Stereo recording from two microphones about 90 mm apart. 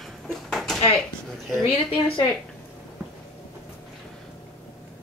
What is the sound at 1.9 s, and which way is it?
Speech, 90° left.